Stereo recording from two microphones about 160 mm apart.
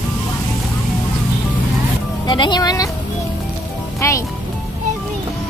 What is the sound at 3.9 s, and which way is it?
Speech, 20° left (ahead or behind).